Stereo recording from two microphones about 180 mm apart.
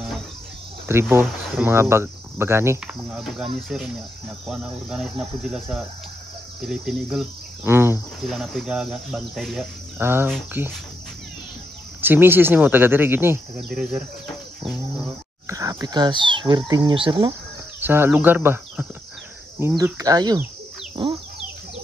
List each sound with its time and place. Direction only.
0.9 s speech: 15° right (ahead or behind)
3.2 s speech: centre (ahead or behind)
8.2 s speech: centre (ahead or behind)
9.9 s speech: 10° right (ahead or behind)
12.0 s speech: 10° right (ahead or behind)
15.4 s speech: 15° right (ahead or behind)
17.3 s speech: 10° right (ahead or behind)